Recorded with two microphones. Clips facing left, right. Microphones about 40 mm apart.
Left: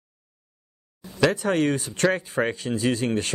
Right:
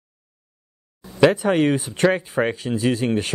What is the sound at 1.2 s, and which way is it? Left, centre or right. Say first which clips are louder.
Speech: right 5 dB; centre.